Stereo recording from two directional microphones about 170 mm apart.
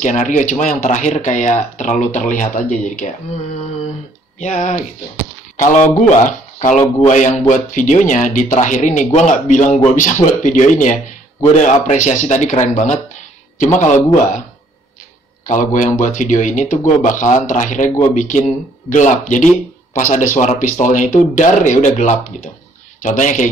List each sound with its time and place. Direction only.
0.0 s speech: 50° left (ahead or behind)
3.0 s a sound: 40° left (ahead or behind)
4.4 s speech: 45° left (ahead or behind)
15.4 s speech: 50° left (ahead or behind)